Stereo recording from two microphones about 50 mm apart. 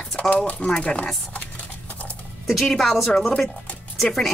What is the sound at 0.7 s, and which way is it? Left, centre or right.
Speech, centre.